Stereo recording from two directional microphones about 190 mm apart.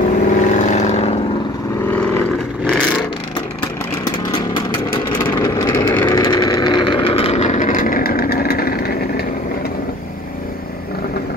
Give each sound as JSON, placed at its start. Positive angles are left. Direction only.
{"t": 0.1, "sound": "vehicle", "side_deg": 40}
{"t": 1.9, "sound": "vehicle", "side_deg": 5}
{"t": 5.1, "sound": "vehicle", "side_deg": 25}